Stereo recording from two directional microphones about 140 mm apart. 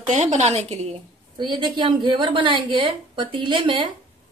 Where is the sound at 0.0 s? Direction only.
60° right (ahead or behind).